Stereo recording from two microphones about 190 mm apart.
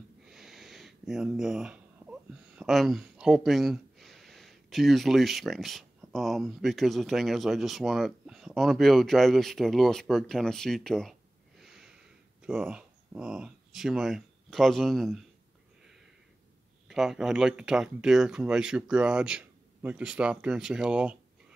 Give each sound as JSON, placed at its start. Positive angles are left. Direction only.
{"t": 0.3, "sound": "speech", "side_deg": 0}
{"t": 11.6, "sound": "a sound", "side_deg": 0}
{"t": 12.4, "sound": "speech", "side_deg": -5}
{"t": 16.8, "sound": "speech", "side_deg": 0}